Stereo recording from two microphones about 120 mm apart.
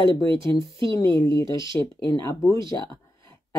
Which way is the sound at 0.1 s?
25° left (ahead or behind).